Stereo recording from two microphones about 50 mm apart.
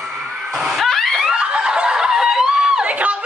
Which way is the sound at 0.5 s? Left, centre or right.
Centre.